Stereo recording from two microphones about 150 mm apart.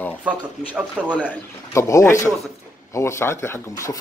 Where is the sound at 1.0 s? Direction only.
5° right (ahead or behind).